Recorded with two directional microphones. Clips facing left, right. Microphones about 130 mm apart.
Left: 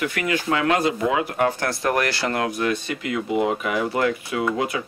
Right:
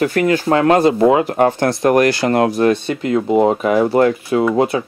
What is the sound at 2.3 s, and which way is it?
Speech, 35° right (ahead or behind).